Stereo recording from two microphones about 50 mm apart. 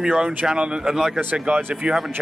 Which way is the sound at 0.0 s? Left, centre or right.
Centre.